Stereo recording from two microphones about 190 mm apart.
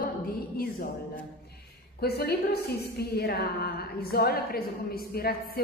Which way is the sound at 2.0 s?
55° left (ahead or behind).